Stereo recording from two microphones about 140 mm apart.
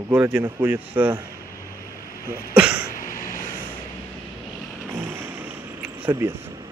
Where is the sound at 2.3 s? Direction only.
10° right (ahead or behind).